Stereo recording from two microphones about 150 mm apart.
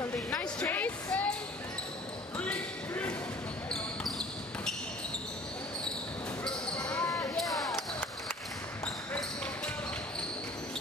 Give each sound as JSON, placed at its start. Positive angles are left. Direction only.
{"t": 0.0, "sound": "music", "side_deg": 10}
{"t": 2.3, "sound": "basketball bounce", "side_deg": 10}
{"t": 6.4, "sound": "basketball bounce", "side_deg": 10}
{"t": 7.1, "sound": "basketball bounce", "side_deg": 20}
{"t": 7.3, "sound": "basketball bounce", "side_deg": 0}